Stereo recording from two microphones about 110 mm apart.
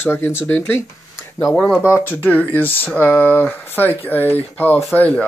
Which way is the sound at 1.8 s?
20° left (ahead or behind).